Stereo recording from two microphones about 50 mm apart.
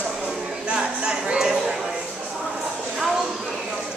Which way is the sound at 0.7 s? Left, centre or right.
Centre.